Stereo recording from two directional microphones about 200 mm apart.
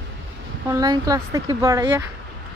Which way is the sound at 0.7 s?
20° right (ahead or behind).